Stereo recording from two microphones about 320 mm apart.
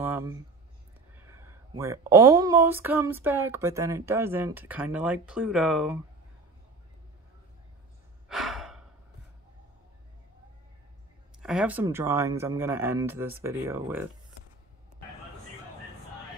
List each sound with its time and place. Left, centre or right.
0.0 s a sound: centre
1.1 s speech: centre
8.3 s sigh: centre
11.4 s speech: centre